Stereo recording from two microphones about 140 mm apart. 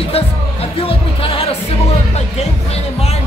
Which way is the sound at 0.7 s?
40° left (ahead or behind).